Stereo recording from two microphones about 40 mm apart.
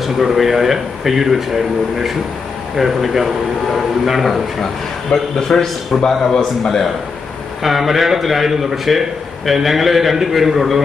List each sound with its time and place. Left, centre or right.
0.0 s a man's voice: centre
2.7 s a man's voice: centre
5.1 s a man's voice: left
5.5 s a man's voice: centre
7.6 s a man's voice: centre